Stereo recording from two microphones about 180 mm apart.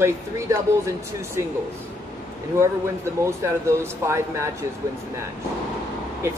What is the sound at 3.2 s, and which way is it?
Speech, 15° right (ahead or behind).